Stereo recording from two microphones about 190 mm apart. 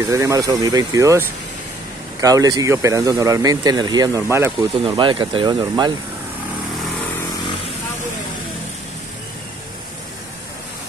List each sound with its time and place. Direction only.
0.0 s speech: 15° right (ahead or behind)
2.2 s speech: 20° right (ahead or behind)
4.8 s speech: 25° right (ahead or behind)